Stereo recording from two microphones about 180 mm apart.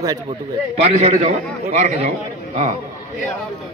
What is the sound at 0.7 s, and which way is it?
A man's voice, 35° right (ahead or behind).